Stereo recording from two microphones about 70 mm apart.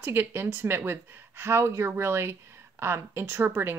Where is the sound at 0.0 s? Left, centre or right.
Right.